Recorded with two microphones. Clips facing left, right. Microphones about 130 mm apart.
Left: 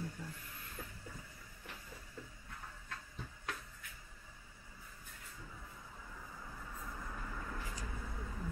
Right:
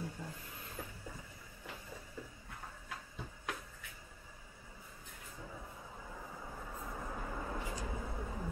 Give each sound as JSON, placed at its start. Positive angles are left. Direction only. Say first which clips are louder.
{"t": 0.0, "sound": "vehicle", "louder": "right 1 dB", "side_deg": -20}
{"t": 2.9, "sound": "a sound", "louder": "right 2 dB", "side_deg": -15}
{"t": 6.4, "sound": "vehicle", "louder": "right 2 dB", "side_deg": -30}